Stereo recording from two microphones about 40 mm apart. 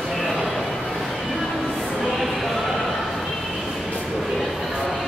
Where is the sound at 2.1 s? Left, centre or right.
Centre.